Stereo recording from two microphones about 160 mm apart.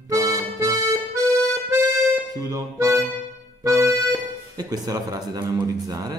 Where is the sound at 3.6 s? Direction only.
20° right (ahead or behind).